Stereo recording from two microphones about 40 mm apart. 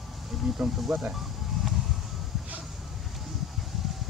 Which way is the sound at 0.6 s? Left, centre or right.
Right.